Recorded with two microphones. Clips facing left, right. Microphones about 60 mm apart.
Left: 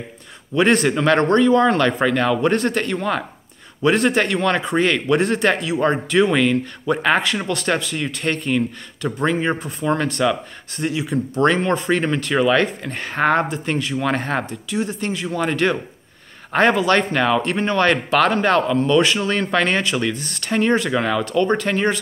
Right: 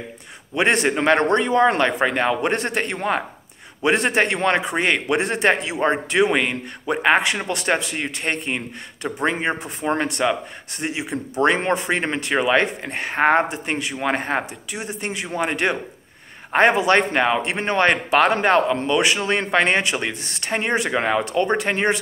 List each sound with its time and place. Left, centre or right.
0.8 s a man's voice: right